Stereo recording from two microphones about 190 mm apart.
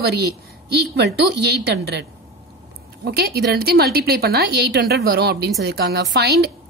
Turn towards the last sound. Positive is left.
turn(degrees=-55)  # may be behind; listen again after turning